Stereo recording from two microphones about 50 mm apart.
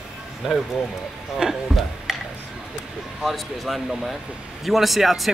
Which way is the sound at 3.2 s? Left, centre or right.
Centre.